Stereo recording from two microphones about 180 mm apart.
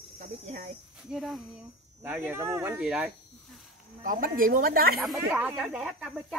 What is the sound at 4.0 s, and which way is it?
Speech, 50° right (ahead or behind).